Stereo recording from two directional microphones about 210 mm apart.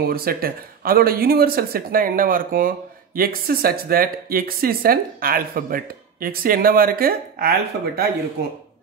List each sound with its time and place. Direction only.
0.0 s speech: 45° right (ahead or behind)